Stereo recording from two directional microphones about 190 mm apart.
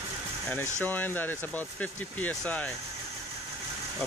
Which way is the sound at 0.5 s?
10° left (ahead or behind).